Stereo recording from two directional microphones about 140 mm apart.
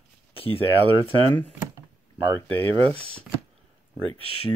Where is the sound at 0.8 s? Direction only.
35° right (ahead or behind).